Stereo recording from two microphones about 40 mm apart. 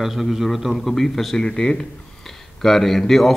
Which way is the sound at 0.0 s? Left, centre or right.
Centre.